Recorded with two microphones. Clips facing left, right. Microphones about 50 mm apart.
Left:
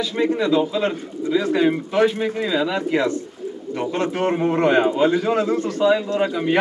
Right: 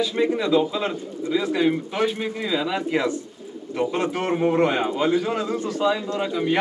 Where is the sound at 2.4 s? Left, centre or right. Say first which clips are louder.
Left 1 dB; centre.